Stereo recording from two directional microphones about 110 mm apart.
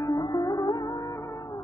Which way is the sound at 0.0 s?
45° left (ahead or behind).